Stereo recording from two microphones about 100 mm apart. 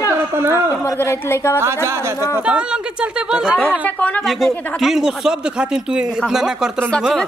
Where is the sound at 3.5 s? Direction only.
15° left (ahead or behind).